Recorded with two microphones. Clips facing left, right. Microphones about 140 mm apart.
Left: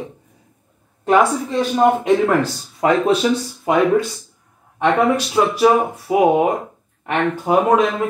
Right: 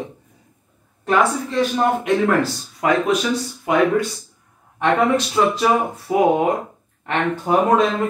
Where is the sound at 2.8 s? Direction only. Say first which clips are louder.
Left 3 dB; 30° left (ahead or behind).